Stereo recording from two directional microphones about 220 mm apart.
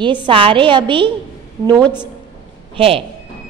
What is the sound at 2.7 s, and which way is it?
Speech, 25° right (ahead or behind).